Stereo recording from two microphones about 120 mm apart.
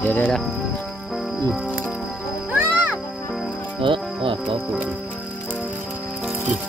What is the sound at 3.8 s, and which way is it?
Speech, 45° right (ahead or behind).